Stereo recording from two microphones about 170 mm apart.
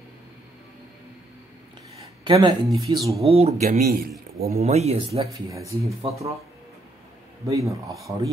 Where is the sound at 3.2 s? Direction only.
35° right (ahead or behind).